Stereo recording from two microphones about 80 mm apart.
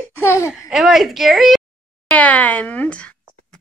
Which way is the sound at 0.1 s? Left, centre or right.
Left.